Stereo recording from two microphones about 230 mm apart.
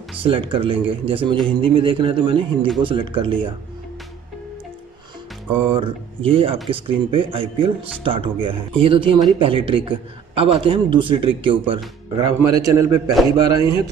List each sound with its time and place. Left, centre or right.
0.2 s a man's voice: right
5.7 s a man's voice: right